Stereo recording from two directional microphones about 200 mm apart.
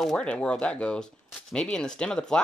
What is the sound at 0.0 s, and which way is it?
A woman's voice, 5° left (ahead or behind).